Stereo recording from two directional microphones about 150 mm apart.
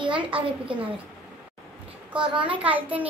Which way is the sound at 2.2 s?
35° right (ahead or behind).